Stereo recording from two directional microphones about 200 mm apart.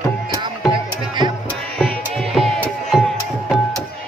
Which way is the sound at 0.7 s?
25° right (ahead or behind).